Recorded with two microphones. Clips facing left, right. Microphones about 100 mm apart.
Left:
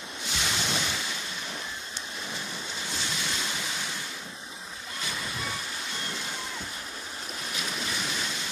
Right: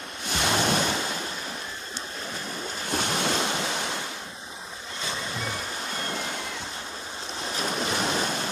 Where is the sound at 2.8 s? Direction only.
55° right (ahead or behind).